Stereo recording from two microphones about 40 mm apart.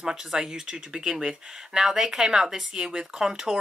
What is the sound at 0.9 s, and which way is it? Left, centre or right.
Speech, right.